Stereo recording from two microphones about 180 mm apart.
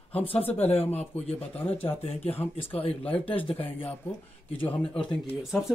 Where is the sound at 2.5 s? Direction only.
30° left (ahead or behind).